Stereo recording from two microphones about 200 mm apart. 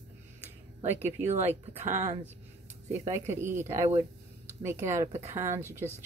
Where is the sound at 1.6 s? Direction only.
35° right (ahead or behind).